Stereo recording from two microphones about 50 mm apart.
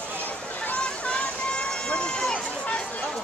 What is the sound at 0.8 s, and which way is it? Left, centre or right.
Run, left.